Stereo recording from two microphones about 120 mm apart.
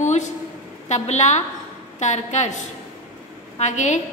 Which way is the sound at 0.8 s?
75° left (ahead or behind).